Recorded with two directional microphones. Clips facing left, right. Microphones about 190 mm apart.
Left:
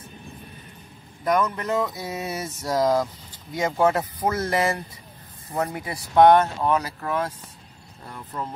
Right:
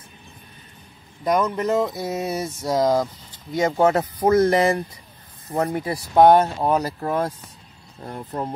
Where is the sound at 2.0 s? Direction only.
Centre (ahead or behind).